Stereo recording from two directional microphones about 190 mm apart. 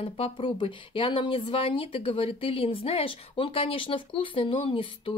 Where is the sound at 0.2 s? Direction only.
25° left (ahead or behind).